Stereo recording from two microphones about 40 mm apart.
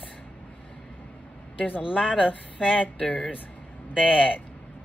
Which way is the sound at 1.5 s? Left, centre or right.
Left.